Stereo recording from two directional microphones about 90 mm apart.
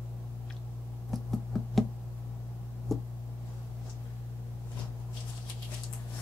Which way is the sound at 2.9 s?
5° left (ahead or behind).